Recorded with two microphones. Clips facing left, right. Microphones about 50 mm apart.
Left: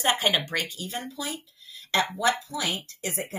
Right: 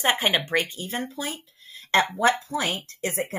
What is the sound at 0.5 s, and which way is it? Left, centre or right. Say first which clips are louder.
Speech: right 5 dB; right.